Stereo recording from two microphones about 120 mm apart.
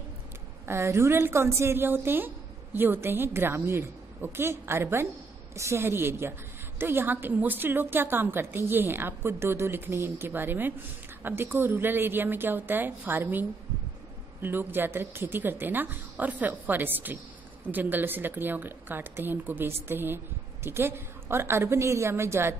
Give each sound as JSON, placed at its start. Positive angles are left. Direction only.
{"t": 0.7, "sound": "a woman's voice", "side_deg": -20}